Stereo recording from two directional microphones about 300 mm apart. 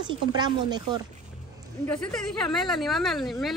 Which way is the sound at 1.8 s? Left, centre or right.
Centre.